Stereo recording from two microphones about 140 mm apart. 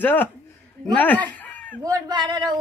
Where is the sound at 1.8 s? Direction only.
25° right (ahead or behind).